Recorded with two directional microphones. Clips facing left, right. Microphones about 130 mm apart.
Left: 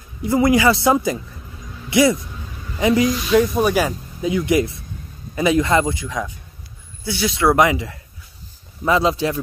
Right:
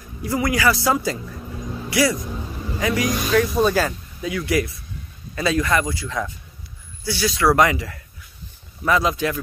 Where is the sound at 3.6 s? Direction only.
10° left (ahead or behind).